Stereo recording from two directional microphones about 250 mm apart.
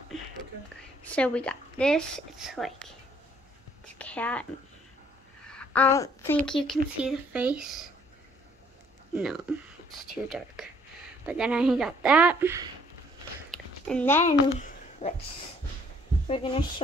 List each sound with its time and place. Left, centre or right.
1.0 s a woman's voice: centre
4.0 s a woman's voice: centre
5.5 s a woman's voice: centre
9.1 s a woman's voice: centre
13.5 s a sound: centre
14.6 s a sound: left
16.3 s speech: left